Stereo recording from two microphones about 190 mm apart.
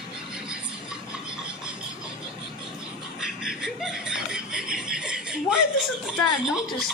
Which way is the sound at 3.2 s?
5° right (ahead or behind).